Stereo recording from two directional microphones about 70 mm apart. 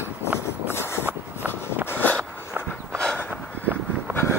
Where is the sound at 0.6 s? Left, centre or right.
Left.